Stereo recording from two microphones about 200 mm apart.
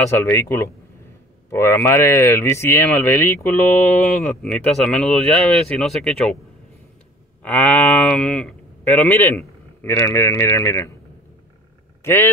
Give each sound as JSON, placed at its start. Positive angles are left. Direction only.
{"t": 0.1, "sound": "speech", "side_deg": 10}
{"t": 7.4, "sound": "a man's voice", "side_deg": 5}
{"t": 12.0, "sound": "speech", "side_deg": 10}